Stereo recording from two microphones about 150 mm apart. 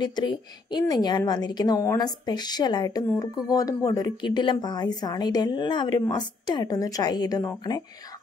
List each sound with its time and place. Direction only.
0.0 s a woman's voice: 30° left (ahead or behind)